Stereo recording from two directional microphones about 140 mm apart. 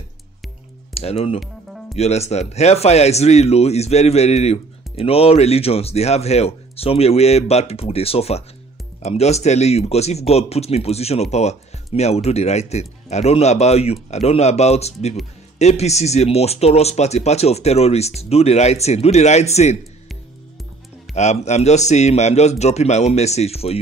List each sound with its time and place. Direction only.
0.9 s speech: 45° left (ahead or behind)
1.4 s music: centre (ahead or behind)
2.0 s speech: 50° left (ahead or behind)
21.1 s speech: 55° left (ahead or behind)